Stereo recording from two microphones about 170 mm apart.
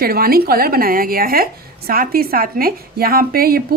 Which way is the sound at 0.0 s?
60° right (ahead or behind).